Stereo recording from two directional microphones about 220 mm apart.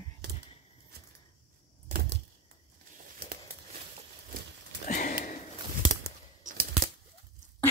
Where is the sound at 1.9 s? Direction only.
45° right (ahead or behind).